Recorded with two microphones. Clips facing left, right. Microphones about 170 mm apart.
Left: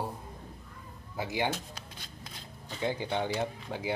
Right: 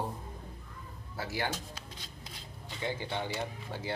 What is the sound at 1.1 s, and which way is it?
Speech, 15° left (ahead or behind).